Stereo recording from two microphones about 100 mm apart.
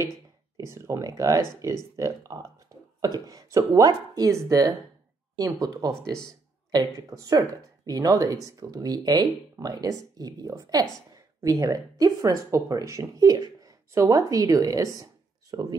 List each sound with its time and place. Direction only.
0.7 s speech: 30° right (ahead or behind)